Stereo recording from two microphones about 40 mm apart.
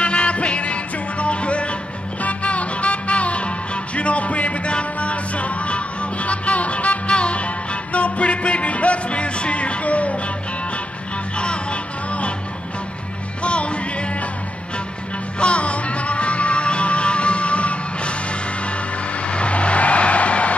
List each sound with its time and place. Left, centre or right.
0.0 s music: left
11.3 s music: left
13.4 s music: left
15.3 s music: left
19.2 s vehicle: left